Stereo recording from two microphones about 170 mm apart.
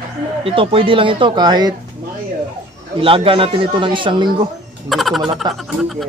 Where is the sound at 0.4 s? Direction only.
30° right (ahead or behind).